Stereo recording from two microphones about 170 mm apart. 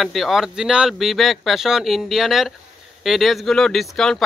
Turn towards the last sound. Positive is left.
turn(degrees=0)  # may be behind; listen again after turning